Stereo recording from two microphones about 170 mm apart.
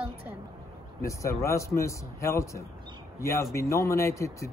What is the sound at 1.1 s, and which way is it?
A man's voice, 15° left (ahead or behind).